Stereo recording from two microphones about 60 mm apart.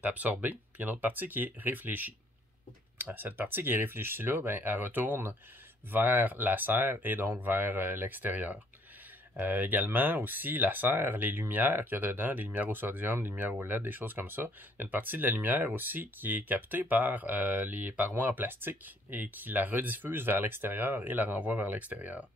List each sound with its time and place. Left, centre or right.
0.0 s speech: right